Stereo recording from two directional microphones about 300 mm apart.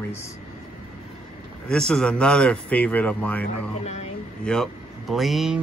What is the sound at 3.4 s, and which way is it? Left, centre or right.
Speech, left.